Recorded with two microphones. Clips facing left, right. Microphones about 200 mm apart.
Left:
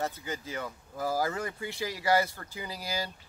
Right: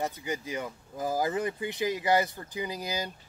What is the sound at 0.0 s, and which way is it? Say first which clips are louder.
Speech: right 2 dB; 15° right (ahead or behind).